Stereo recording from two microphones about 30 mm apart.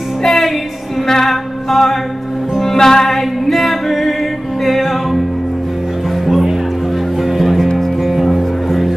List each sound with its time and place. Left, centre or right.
0.2 s music: centre
1.0 s female singing: centre
1.3 s music: centre
3.2 s music: centre
6.2 s music: centre